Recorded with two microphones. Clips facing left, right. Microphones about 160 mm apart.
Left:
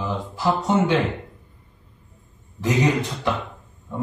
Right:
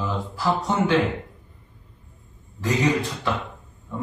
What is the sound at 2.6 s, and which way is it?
Mantra, 20° left (ahead or behind).